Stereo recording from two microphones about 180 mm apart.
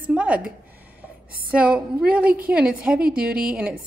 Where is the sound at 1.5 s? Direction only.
5° right (ahead or behind).